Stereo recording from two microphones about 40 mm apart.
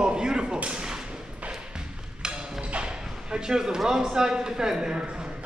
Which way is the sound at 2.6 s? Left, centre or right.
Right.